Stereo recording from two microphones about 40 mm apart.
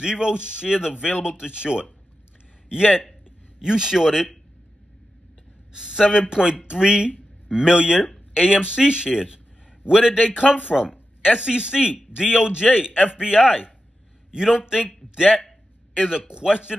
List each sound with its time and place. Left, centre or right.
0.0 s a man's voice: right
5.7 s a man's voice: centre
16.0 s speech: centre